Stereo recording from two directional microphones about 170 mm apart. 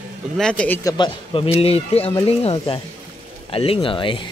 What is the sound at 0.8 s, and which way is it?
Speech, 25° left (ahead or behind).